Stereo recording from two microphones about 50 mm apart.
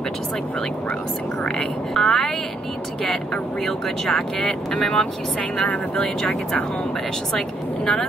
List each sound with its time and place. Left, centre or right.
1.6 s speech: centre
3.6 s speech: centre